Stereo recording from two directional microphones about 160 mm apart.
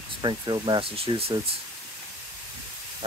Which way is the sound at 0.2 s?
30° right (ahead or behind).